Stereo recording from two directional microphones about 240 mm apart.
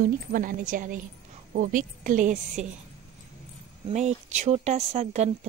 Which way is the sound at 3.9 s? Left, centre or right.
Right.